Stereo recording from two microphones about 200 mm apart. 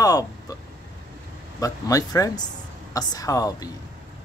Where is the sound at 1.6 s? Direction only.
15° left (ahead or behind).